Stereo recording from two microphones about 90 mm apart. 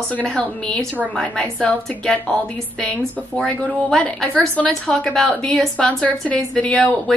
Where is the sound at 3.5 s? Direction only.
10° left (ahead or behind).